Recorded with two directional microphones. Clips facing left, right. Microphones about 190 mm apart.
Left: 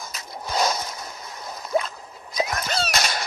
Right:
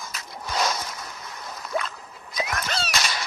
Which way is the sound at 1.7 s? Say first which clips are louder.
Left 5 dB; 25° left (ahead or behind).